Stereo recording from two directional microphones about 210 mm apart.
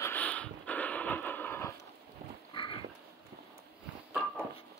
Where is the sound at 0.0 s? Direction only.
10° left (ahead or behind).